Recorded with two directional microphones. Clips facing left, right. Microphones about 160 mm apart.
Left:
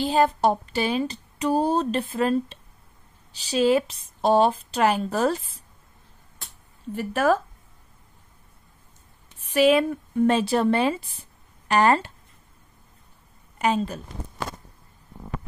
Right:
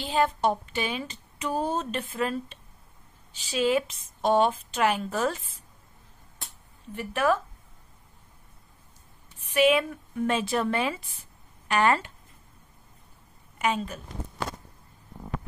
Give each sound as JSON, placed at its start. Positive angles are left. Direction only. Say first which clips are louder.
{"t": 0.0, "sound": "speech", "louder": "left 4 dB", "side_deg": 40}
{"t": 7.0, "sound": "speech", "louder": "left 4 dB", "side_deg": 40}
{"t": 9.4, "sound": "speech", "louder": "left 4 dB", "side_deg": 35}
{"t": 13.6, "sound": "a woman's voice", "louder": "left 4 dB", "side_deg": 35}